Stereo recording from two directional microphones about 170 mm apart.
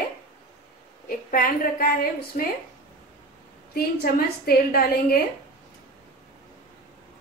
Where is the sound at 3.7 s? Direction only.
65° left (ahead or behind).